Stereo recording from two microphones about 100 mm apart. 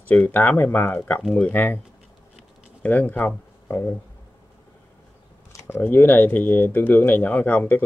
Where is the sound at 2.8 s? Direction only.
15° left (ahead or behind).